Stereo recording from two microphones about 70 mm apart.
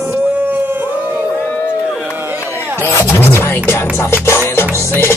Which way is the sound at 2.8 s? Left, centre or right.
Left.